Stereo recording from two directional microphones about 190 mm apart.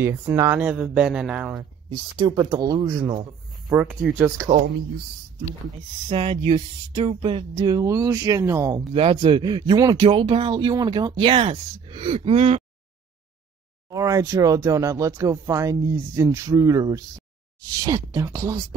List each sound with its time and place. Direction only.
0.0 s speech: 15° right (ahead or behind)
1.9 s speech: 25° right (ahead or behind)
3.7 s speech: 5° right (ahead or behind)
6.0 s speech: 30° right (ahead or behind); by 8.8 s 15° right (ahead or behind)
8.9 s speech: 30° right (ahead or behind)
13.8 s speech: 20° right (ahead or behind)